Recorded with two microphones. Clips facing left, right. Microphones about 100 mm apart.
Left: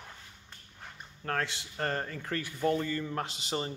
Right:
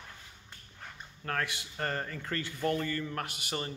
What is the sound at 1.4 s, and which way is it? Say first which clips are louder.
A man's voice: even; 20° left (ahead or behind).